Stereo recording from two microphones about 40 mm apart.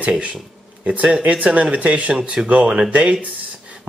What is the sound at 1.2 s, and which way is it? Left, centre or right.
Speech, right.